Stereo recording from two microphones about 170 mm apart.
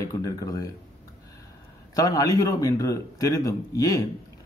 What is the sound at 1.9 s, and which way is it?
Speech, 20° left (ahead or behind).